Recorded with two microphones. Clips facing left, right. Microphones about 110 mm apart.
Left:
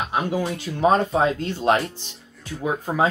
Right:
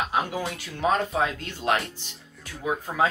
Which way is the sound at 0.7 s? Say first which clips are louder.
Left 5 dB; 30° left (ahead or behind).